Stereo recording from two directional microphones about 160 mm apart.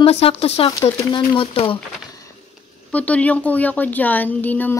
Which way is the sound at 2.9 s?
10° left (ahead or behind).